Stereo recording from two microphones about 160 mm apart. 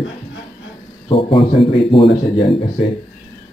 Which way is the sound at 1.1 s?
35° left (ahead or behind).